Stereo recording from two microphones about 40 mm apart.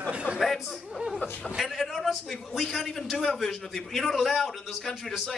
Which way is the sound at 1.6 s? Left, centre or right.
Centre.